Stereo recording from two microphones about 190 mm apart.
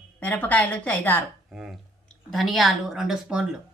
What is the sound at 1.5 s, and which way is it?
Speech, 5° right (ahead or behind).